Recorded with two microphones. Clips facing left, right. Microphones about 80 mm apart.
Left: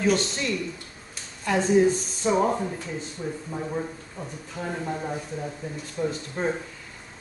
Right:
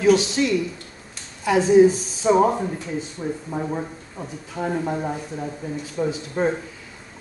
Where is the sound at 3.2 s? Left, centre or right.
Right.